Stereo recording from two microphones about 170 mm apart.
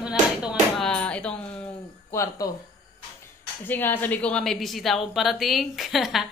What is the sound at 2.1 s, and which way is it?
Speech, 15° left (ahead or behind).